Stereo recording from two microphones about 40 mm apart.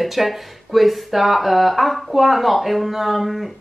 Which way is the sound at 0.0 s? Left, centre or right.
Centre.